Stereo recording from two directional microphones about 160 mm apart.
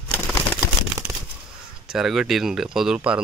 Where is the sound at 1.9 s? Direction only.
5° right (ahead or behind).